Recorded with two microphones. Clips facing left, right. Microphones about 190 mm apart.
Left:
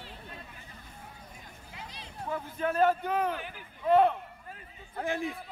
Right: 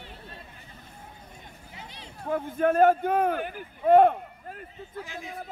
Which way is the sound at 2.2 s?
50° right (ahead or behind).